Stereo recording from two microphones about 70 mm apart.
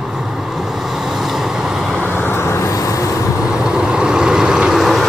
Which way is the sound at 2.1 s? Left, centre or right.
Left.